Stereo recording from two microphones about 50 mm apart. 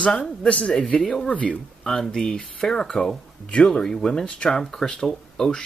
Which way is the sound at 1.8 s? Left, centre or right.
Centre.